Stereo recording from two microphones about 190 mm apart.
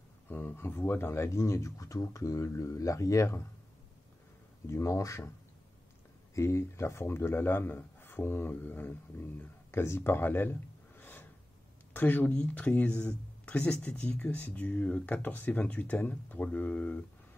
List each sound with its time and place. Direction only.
0.3 s speech: 10° left (ahead or behind)
4.6 s speech: 15° left (ahead or behind)
6.3 s speech: 15° left (ahead or behind)